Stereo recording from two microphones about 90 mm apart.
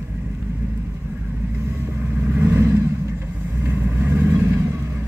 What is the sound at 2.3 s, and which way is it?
Vehicle, 20° right (ahead or behind).